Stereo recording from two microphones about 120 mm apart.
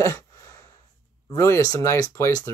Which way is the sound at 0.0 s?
25° left (ahead or behind).